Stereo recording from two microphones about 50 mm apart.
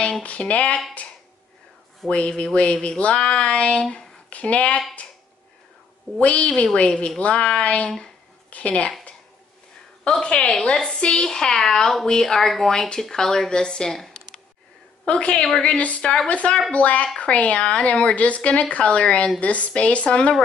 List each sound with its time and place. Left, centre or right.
0.2 s a woman's voice: left
2.0 s a woman's voice: left
6.1 s a woman's voice: left
10.2 s a woman's voice: left
15.0 s a woman's voice: left